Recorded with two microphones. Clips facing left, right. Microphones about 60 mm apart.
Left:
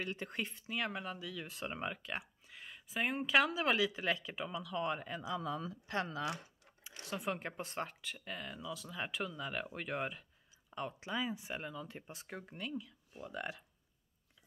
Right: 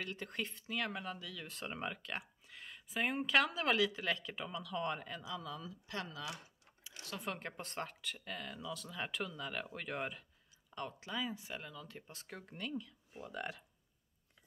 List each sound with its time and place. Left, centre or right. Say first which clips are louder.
0.0 s speech: left 2 dB; centre
5.1 s speech: left 5 dB; left
7.1 s speech: left 4 dB; centre